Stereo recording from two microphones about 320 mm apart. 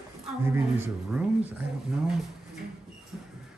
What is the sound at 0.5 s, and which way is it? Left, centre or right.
Speech, centre.